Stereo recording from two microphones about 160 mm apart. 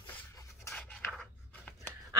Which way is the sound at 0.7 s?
5° left (ahead or behind).